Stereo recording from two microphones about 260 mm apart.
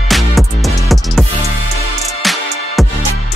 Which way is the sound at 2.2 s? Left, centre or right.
Centre.